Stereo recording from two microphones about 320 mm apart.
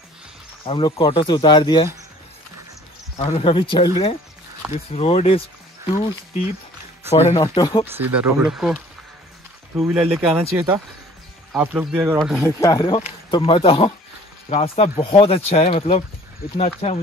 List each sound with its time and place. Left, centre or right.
0.7 s speech: centre
3.2 s speech: centre
7.1 s speech: centre
7.8 s speech: centre